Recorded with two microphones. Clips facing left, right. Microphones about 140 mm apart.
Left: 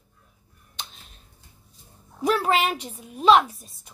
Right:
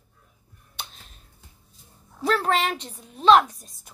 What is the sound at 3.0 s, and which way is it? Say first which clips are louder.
Speech: right 1 dB; 10° left (ahead or behind).